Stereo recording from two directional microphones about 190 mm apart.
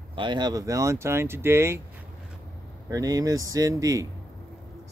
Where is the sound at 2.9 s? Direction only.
20° right (ahead or behind).